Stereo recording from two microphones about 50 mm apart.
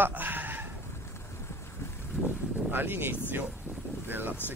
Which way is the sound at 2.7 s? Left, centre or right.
Right.